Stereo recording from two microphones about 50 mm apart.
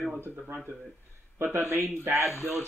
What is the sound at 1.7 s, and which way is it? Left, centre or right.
Speech, right.